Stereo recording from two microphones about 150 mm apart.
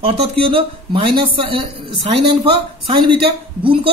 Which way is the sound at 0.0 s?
35° right (ahead or behind).